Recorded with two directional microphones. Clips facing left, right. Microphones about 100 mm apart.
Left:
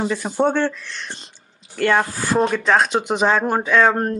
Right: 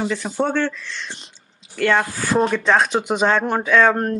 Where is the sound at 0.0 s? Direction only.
15° left (ahead or behind).